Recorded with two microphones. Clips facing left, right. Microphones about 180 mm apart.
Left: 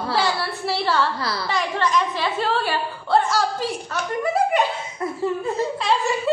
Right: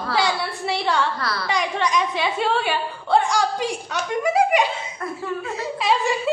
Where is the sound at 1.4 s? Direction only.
Centre (ahead or behind).